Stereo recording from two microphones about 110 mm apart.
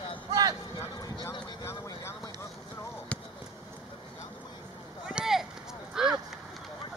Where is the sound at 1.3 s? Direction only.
25° left (ahead or behind).